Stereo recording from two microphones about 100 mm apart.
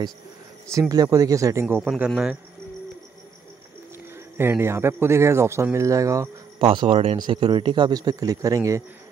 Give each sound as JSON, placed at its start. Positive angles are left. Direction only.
{"t": 0.7, "sound": "speech", "side_deg": -35}
{"t": 2.0, "sound": "speech", "side_deg": -5}
{"t": 4.4, "sound": "speech", "side_deg": -25}
{"t": 6.6, "sound": "speech", "side_deg": -60}
{"t": 7.2, "sound": "speech", "side_deg": -50}